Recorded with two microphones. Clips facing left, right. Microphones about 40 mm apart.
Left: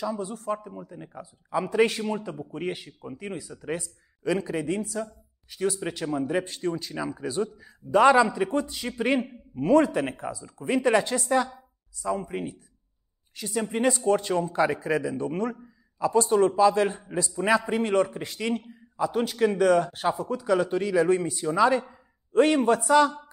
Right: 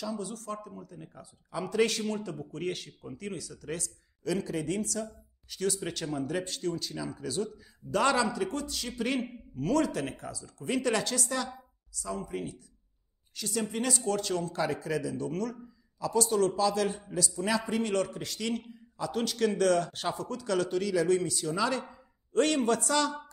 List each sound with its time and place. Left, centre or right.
0.0 s speech: left
21.9 s a sound: centre
22.8 s chopping: centre